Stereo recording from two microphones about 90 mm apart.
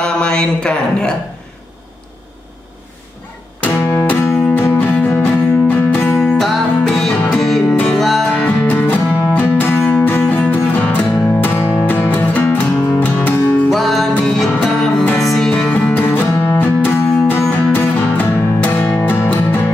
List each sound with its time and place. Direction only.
0.0 s speech: 10° left (ahead or behind)
3.6 s music: 25° left (ahead or behind)
6.1 s music: 5° left (ahead or behind)
8.3 s music: 15° left (ahead or behind)
13.7 s music: centre (ahead or behind)
15.5 s music: 15° left (ahead or behind)